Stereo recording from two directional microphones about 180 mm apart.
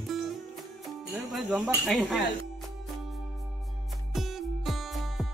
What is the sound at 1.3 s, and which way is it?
Speech, 5° right (ahead or behind).